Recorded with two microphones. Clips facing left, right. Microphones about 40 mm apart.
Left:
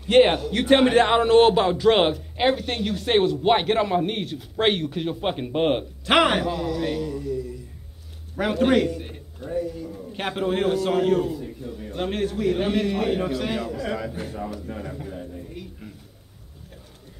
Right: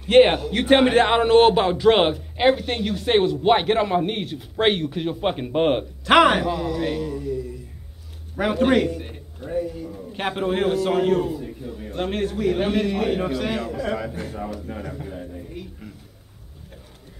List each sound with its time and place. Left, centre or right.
0.1 s a man's voice: centre
8.4 s a man's voice: centre
9.5 s speech: right
9.8 s a man's voice: centre
14.7 s a sound: centre